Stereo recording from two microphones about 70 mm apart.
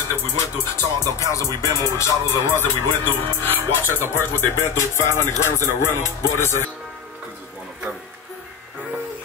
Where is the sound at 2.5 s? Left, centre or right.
Left.